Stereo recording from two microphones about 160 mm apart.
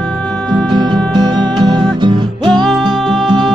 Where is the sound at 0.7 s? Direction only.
30° right (ahead or behind).